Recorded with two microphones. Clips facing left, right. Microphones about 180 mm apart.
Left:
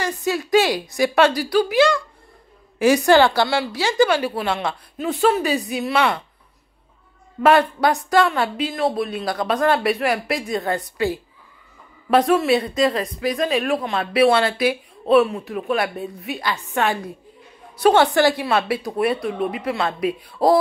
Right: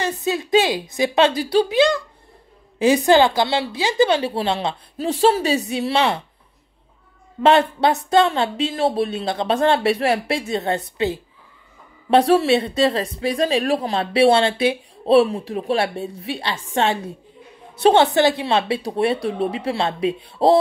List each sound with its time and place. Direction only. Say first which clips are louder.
0.0 s a woman's voice: even; 20° right (ahead or behind)
3.1 s a woman's voice: even; 15° right (ahead or behind)
7.4 s a woman's voice: even; 25° right (ahead or behind)